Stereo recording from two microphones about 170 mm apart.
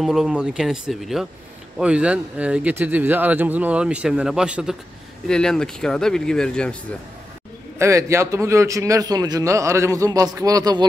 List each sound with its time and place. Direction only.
0.0 s a man's voice: 5° right (ahead or behind)
7.8 s a man's voice: 15° right (ahead or behind)